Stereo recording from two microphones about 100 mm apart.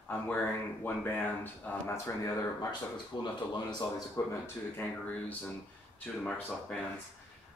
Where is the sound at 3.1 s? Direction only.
50° left (ahead or behind).